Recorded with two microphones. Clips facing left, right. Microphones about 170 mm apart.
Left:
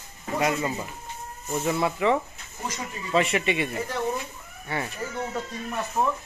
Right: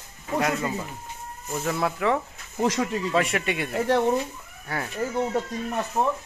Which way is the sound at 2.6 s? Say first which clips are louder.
Right 10 dB; 80° right.